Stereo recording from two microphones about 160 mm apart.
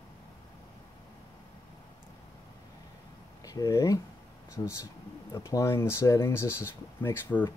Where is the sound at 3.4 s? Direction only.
20° left (ahead or behind).